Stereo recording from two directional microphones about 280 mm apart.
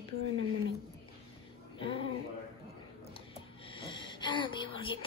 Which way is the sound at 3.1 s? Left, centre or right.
Centre.